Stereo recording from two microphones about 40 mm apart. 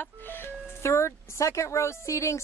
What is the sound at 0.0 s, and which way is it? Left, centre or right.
Music, left.